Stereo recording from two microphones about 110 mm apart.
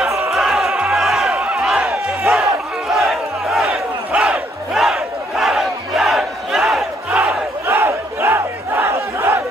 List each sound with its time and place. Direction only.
0.3 s crowd: centre (ahead or behind)
4.1 s battle cry: 10° right (ahead or behind)
7.6 s battle cry: 20° right (ahead or behind)